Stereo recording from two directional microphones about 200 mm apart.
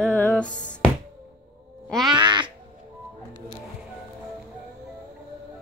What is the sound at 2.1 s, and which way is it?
Speech, 25° right (ahead or behind).